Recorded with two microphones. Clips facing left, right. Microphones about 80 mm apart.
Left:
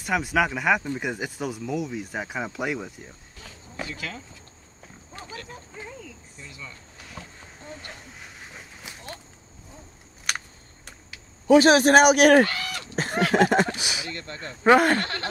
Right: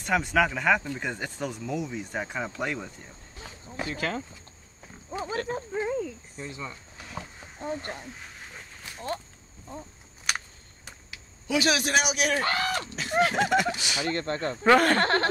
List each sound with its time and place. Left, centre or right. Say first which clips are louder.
0.0 s speech: even; centre
3.8 s speech: right 4 dB; right
5.2 s cricket: right 10 dB; right
8.2 s a sound: left 1 dB; centre
10.3 s a sound: even; centre
11.4 s speech: left 10 dB; left
12.4 s speech: right 5 dB; right
12.9 s a sound: left 3 dB; left
13.9 s speech: right 7 dB; right
14.6 s speech: left 3 dB; centre
15.0 s speech: right 7 dB; right